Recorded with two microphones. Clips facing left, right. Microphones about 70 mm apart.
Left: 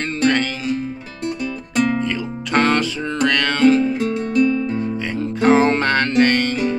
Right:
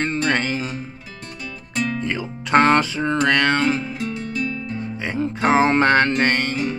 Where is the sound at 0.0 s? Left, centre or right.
Right.